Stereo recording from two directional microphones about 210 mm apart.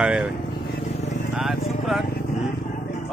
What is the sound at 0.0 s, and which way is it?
Speech, 5° right (ahead or behind).